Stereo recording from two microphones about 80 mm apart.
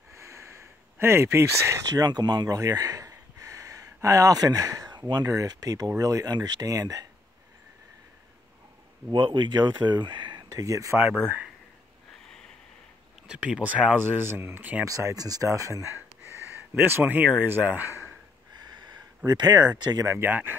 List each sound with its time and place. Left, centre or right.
0.1 s a sound: right
1.9 s speech: right
2.5 s a sound: right
5.2 s speech: right
9.1 s speech: right
10.5 s speech: right
13.3 s speech: centre
14.1 s speech: right
14.9 s speech: right
16.8 s speech: right
18.5 s a sound: right
20.1 s speech: right